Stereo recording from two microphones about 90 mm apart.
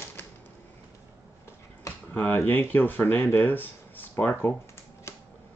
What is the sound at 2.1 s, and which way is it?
Speech, 20° left (ahead or behind).